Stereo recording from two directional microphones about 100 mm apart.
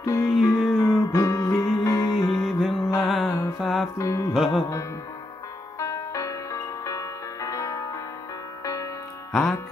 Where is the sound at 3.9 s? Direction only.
30° left (ahead or behind).